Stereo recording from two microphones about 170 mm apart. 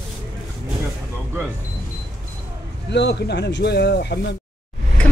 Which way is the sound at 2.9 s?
85° left.